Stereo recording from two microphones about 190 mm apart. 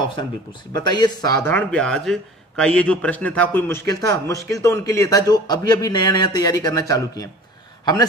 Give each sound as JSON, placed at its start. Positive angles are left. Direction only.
{"t": 0.7, "sound": "speech", "side_deg": 20}